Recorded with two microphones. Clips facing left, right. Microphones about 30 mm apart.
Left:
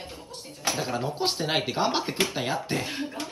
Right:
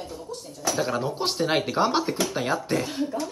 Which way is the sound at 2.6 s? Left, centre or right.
Left.